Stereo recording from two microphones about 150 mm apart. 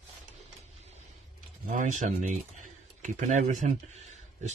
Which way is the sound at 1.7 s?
55° right (ahead or behind).